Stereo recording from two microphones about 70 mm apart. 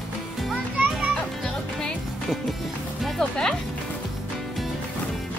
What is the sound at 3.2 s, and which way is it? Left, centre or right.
Speech, centre.